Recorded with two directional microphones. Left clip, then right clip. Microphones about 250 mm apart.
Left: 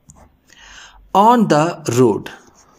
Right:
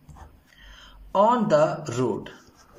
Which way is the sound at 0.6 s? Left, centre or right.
Left.